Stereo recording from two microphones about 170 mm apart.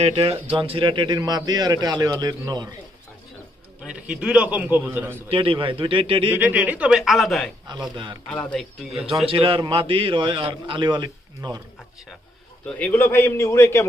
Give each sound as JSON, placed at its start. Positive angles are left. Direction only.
{"t": 0.0, "sound": "a man's voice", "side_deg": -35}
{"t": 3.8, "sound": "a man's voice", "side_deg": -5}
{"t": 5.3, "sound": "speech", "side_deg": -30}
{"t": 6.3, "sound": "a man's voice", "side_deg": -10}
{"t": 7.9, "sound": "a man's voice", "side_deg": -30}
{"t": 8.3, "sound": "a man's voice", "side_deg": 5}
{"t": 9.2, "sound": "a man's voice", "side_deg": -30}
{"t": 12.6, "sound": "a man's voice", "side_deg": 10}